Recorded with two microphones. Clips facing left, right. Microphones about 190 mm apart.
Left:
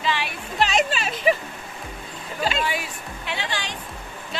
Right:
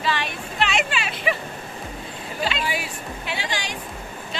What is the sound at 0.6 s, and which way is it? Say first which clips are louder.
Speech: left 3 dB; 40° left (ahead or behind).